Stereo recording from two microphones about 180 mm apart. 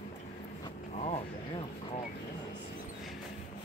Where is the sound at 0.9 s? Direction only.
35° left (ahead or behind).